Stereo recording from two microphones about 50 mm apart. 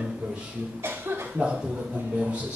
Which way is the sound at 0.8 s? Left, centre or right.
Right.